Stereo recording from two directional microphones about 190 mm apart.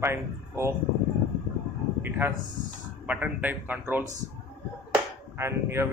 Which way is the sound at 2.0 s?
10° right (ahead or behind).